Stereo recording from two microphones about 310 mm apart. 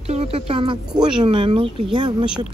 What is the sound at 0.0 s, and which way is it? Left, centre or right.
Speech, centre.